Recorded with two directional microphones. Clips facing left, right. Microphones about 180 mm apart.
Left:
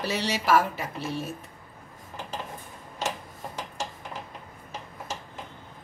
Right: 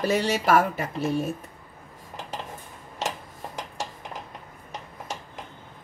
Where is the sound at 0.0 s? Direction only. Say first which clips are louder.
Right 5 dB; 50° right (ahead or behind).